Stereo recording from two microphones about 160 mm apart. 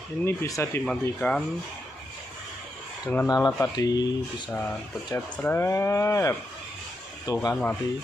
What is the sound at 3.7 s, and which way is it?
Speech, 25° left (ahead or behind).